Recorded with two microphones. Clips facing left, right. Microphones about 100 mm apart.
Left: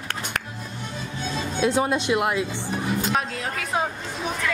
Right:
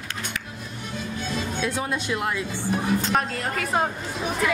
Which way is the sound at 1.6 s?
25° left (ahead or behind).